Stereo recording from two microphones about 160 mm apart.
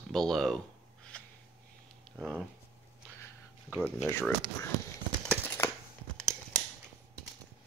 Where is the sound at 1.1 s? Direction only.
5° left (ahead or behind).